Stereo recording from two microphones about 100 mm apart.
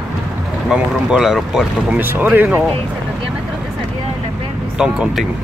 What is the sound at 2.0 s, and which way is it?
Speech, 20° right (ahead or behind).